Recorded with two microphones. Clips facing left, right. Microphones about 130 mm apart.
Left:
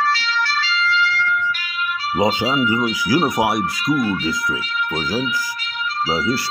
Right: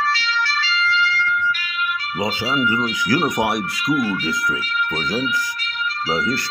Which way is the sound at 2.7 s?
10° left (ahead or behind).